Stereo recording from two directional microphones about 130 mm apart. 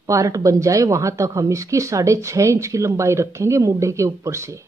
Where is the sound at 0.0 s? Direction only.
25° right (ahead or behind).